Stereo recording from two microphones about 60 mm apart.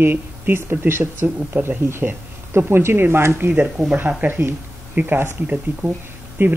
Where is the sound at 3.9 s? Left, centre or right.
Right.